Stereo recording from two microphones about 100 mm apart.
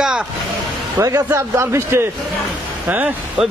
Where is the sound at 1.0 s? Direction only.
30° right (ahead or behind); by 3.5 s 10° right (ahead or behind).